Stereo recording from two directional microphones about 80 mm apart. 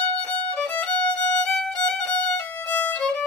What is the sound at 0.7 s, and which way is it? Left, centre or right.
Violin, centre.